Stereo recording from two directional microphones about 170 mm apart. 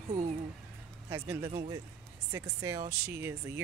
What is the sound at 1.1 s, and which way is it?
Speech, 15° right (ahead or behind).